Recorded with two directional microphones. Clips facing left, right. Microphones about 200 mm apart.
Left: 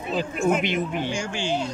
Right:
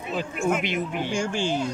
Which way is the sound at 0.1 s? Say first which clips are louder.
Left 3 dB; 35° left (ahead or behind).